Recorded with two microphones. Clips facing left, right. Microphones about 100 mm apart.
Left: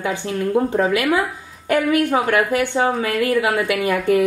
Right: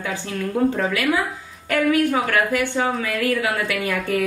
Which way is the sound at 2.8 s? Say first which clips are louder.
Left 3 dB; 40° left (ahead or behind).